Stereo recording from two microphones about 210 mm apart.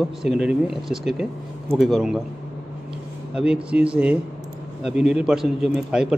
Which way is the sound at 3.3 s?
5° right (ahead or behind).